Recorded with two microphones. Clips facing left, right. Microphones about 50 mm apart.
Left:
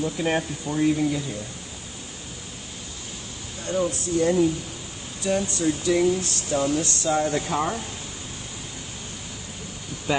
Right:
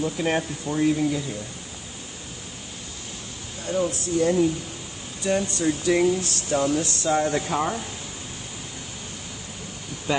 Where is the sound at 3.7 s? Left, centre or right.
Centre.